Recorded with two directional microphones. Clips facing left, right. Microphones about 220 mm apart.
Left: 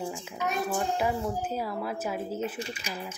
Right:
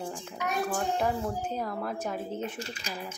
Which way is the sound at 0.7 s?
5° left (ahead or behind).